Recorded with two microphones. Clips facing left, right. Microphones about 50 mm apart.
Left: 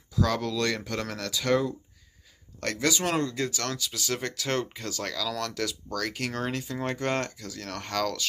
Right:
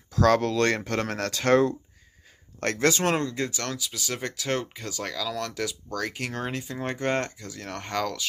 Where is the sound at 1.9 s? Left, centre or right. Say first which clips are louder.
Right 4 dB; right.